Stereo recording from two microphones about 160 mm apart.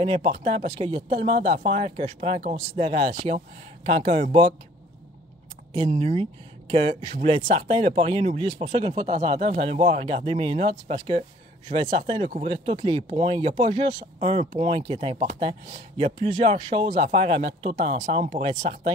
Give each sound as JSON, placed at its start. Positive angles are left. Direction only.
{"t": 0.0, "sound": "speech", "side_deg": -35}
{"t": 5.7, "sound": "speech", "side_deg": -35}